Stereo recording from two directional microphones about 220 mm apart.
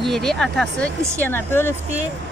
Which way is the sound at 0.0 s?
Centre (ahead or behind).